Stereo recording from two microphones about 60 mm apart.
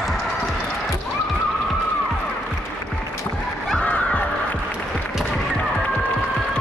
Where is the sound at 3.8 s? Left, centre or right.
Left.